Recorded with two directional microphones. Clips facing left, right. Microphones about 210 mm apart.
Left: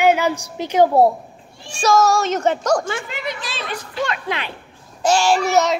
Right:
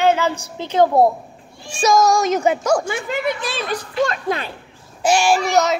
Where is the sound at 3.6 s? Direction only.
40° right (ahead or behind).